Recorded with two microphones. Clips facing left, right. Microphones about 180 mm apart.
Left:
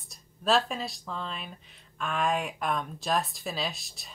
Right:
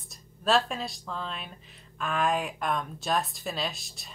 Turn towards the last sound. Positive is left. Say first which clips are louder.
# even
turn(degrees=0)  # may be behind; listen again after turning